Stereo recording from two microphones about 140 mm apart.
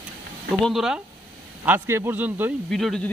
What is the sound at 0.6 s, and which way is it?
Speech, 5° right (ahead or behind).